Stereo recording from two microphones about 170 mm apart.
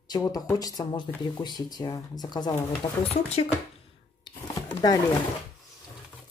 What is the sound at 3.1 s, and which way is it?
Speech, 40° left (ahead or behind).